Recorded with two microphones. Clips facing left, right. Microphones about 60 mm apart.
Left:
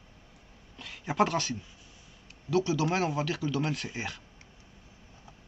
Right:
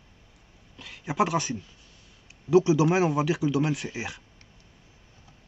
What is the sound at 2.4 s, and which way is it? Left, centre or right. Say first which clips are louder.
Speech: right 7 dB; centre.